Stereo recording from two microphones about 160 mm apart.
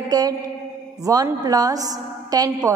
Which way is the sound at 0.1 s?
25° right (ahead or behind).